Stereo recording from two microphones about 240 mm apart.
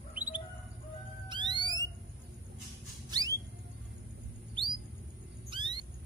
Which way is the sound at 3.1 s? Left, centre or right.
Centre.